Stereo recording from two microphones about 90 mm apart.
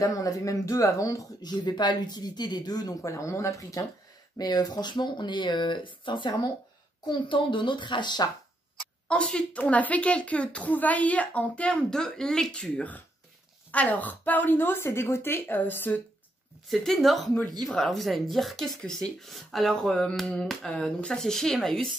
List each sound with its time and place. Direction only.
0.0 s speech: 40° left (ahead or behind)
4.4 s speech: 45° left (ahead or behind)
9.0 s speech: 10° left (ahead or behind)
16.6 s speech: 5° left (ahead or behind)